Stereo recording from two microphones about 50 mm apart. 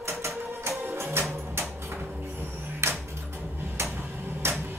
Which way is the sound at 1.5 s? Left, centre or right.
Right.